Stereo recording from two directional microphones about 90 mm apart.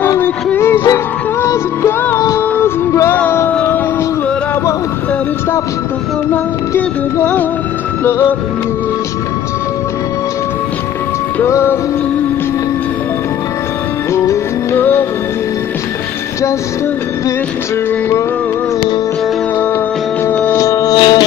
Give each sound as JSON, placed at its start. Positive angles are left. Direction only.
{"t": 0.2, "sound": "music", "side_deg": 25}
{"t": 6.3, "sound": "music", "side_deg": 25}
{"t": 11.4, "sound": "music", "side_deg": 30}
{"t": 14.1, "sound": "music", "side_deg": 30}
{"t": 20.2, "sound": "music", "side_deg": 20}
{"t": 20.5, "sound": "music", "side_deg": 35}
{"t": 20.9, "sound": "music", "side_deg": 55}